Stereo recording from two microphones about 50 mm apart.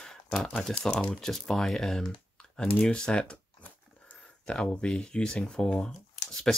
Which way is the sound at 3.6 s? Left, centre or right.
Left.